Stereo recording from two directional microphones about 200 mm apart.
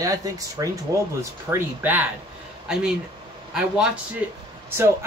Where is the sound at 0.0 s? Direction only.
15° right (ahead or behind).